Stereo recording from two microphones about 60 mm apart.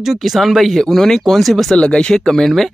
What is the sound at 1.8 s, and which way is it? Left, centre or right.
Speech, centre.